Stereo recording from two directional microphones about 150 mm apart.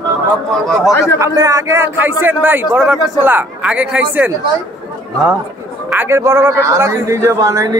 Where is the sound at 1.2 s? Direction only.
20° right (ahead or behind).